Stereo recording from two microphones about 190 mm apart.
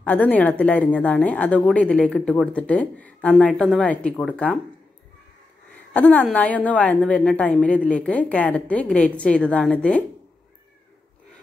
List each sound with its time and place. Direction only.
0.0 s a woman's voice: 10° left (ahead or behind)
5.9 s a woman's voice: 5° left (ahead or behind)